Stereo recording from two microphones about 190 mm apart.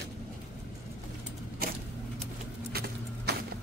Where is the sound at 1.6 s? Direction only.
50° right (ahead or behind).